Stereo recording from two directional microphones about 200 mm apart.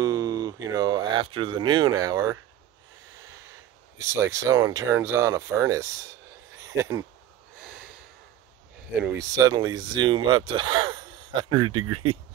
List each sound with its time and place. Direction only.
0.0 s a sound: 20° right (ahead or behind)
4.0 s speech: 15° right (ahead or behind)
7.6 s snort: 5° right (ahead or behind)
9.0 s speech: 15° right (ahead or behind)
11.6 s speech: 90° right